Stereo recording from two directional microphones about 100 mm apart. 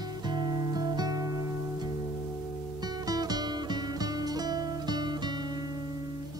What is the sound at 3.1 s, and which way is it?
Music, 40° right (ahead or behind).